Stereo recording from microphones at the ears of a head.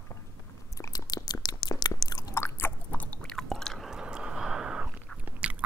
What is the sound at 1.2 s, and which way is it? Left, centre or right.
Chewing, left.